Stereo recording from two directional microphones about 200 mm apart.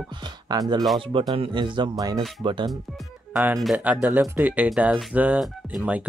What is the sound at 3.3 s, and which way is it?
Speech, 5° right (ahead or behind).